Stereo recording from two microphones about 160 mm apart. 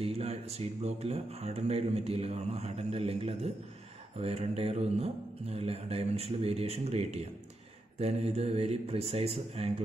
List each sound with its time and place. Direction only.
0.0 s speech: 40° right (ahead or behind)